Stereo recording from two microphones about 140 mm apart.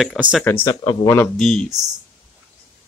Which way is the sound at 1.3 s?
5° left (ahead or behind).